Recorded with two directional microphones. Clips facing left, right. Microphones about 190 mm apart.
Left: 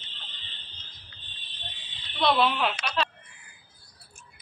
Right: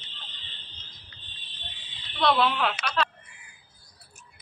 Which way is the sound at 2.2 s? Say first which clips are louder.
Even; 15° left (ahead or behind).